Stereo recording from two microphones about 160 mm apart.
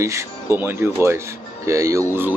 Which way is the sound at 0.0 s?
15° right (ahead or behind).